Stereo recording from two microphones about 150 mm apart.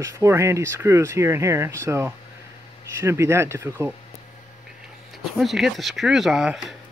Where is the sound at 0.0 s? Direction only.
20° right (ahead or behind).